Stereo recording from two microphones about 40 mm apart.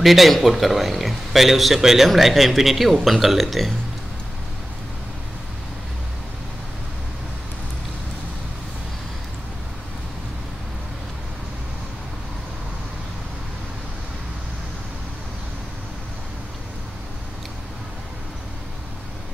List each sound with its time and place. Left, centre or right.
0.0 s speech: centre